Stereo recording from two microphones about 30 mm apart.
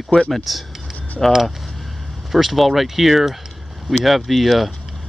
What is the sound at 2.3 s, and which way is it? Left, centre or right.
Speech, centre.